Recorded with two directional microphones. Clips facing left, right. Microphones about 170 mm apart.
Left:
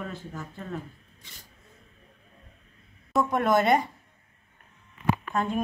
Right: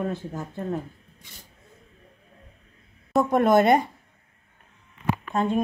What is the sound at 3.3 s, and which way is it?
Speech, 50° right (ahead or behind).